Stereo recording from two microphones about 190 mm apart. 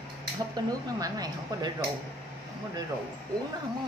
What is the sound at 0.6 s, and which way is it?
Speech, 20° right (ahead or behind).